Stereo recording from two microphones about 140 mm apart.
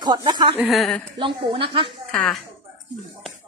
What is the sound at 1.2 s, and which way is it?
Speech, 40° right (ahead or behind).